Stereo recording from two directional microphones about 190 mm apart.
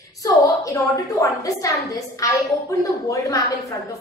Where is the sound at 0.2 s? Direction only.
15° left (ahead or behind).